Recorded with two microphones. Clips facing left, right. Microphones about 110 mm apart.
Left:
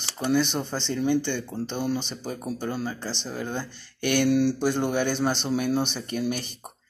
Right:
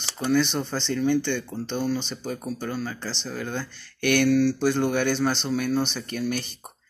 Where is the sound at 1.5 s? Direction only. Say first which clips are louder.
Right 1 dB; 5° left (ahead or behind).